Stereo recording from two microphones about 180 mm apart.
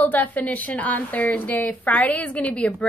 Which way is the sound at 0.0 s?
10° left (ahead or behind).